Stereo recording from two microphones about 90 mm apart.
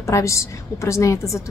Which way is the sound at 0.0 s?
35° left (ahead or behind).